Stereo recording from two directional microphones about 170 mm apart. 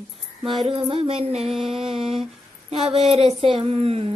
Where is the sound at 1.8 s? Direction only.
35° right (ahead or behind).